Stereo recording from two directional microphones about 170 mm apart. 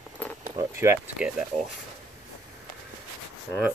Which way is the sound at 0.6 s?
15° right (ahead or behind).